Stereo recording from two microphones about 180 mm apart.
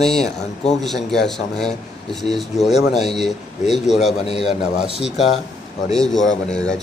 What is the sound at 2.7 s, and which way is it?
Speech, 40° left (ahead or behind).